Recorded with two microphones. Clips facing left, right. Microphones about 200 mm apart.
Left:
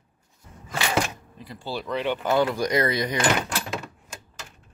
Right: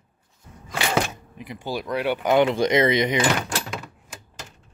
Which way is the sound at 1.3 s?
20° right (ahead or behind).